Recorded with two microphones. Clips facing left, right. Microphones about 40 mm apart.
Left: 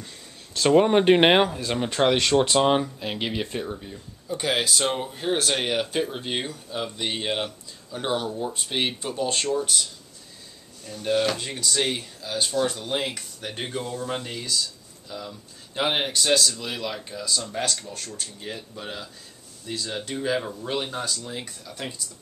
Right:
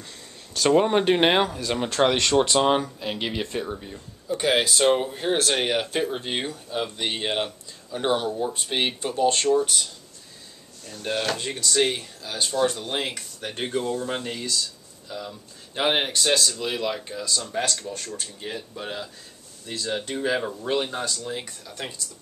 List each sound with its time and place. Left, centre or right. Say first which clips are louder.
0.7 s speech: left 1 dB; centre
1.0 s speech: left 3 dB; centre
2.0 s speech: even; centre
10.9 s speech: left 3 dB; centre